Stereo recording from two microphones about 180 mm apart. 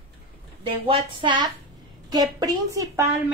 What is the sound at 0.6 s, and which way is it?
A woman's voice, 30° right (ahead or behind).